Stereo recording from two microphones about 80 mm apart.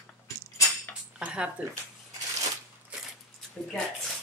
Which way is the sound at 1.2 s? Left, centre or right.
Centre.